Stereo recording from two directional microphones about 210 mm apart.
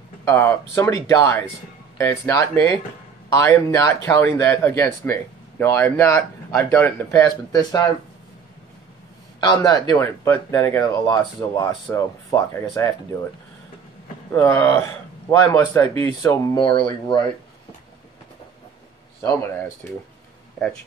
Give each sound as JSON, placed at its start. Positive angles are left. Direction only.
{"t": 0.3, "sound": "speech", "side_deg": 10}
{"t": 3.5, "sound": "speech", "side_deg": 15}
{"t": 9.4, "sound": "speech", "side_deg": 20}
{"t": 14.3, "sound": "speech", "side_deg": 15}
{"t": 15.9, "sound": "speech", "side_deg": -25}
{"t": 16.2, "sound": "speech", "side_deg": 15}
{"t": 19.2, "sound": "speech", "side_deg": 10}